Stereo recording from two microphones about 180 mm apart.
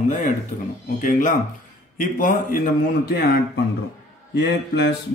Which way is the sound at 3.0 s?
60° left (ahead or behind).